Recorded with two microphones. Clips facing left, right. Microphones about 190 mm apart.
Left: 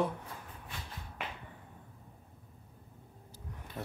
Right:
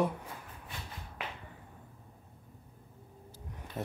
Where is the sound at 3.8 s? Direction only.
20° right (ahead or behind).